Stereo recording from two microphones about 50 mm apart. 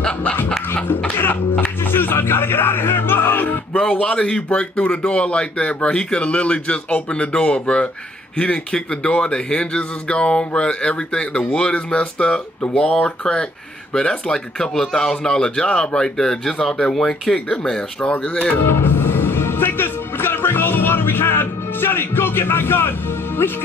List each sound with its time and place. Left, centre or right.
1.1 s speech: left
3.8 s a man's voice: centre
18.6 s music: left